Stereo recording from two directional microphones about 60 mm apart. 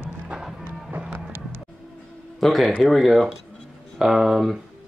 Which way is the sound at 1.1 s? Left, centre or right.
Right.